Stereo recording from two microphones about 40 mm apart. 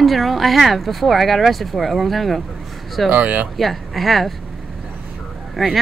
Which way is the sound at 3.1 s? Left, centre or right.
Right.